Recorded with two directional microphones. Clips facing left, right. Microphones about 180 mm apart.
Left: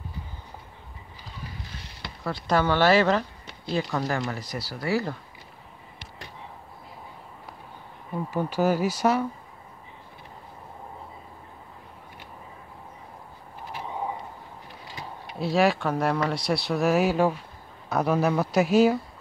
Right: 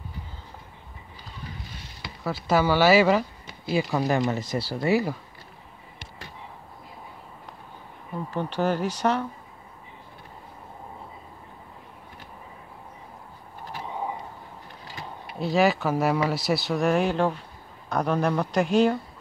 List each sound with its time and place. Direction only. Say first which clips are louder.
2.0 s speech: right 1 dB; 5° right (ahead or behind)
4.1 s speech: right 5 dB; 20° right (ahead or behind)
8.3 s speech: left 2 dB; 10° left (ahead or behind)
15.2 s speech: even; centre (ahead or behind)